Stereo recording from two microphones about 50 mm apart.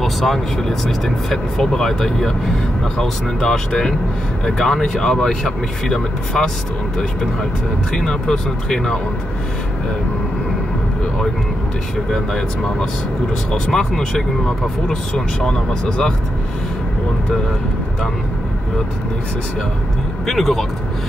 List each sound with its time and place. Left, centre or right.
0.0 s speech: centre
7.9 s speech: centre
12.1 s speech: centre
20.2 s speech: centre